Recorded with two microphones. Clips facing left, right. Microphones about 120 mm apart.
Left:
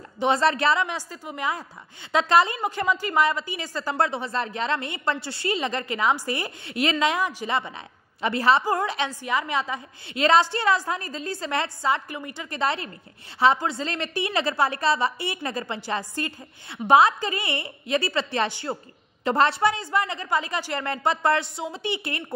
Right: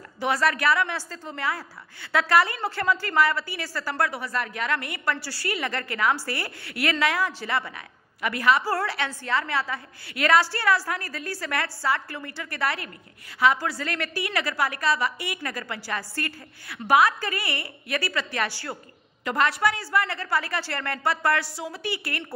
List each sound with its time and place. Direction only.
0.2 s a woman's voice: 25° left (ahead or behind)